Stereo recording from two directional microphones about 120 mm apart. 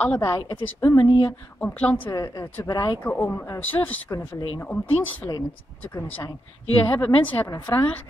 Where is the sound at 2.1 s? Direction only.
30° left (ahead or behind).